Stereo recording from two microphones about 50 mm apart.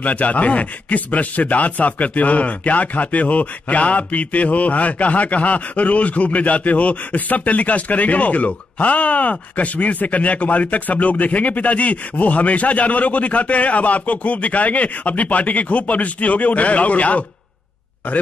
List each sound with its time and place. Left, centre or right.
0.0 s speech: left